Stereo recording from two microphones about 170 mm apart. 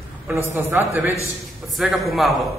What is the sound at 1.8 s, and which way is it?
Speech, centre (ahead or behind).